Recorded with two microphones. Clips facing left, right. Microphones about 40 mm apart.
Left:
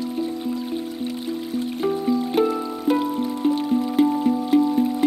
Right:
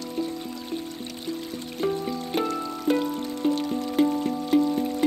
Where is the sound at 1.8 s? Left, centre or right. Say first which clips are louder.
Left 5 dB; centre.